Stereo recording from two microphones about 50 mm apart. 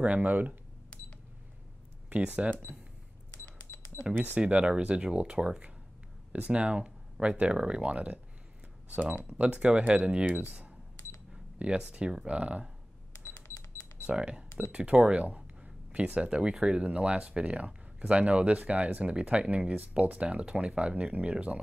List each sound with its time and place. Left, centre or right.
0.0 s speech: right
2.0 s speech: right
3.9 s speech: right
4.4 s speech: right
9.4 s speech: right
11.5 s speech: right
14.0 s speech: centre